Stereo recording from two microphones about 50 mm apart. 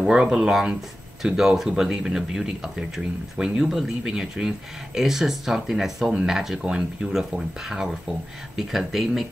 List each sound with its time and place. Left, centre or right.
0.0 s speech: centre